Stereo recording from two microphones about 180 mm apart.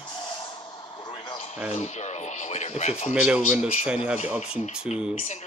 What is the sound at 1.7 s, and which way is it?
Speech, 40° left (ahead or behind).